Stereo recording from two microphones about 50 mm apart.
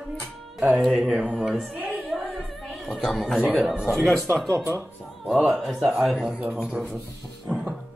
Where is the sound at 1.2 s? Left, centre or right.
Centre.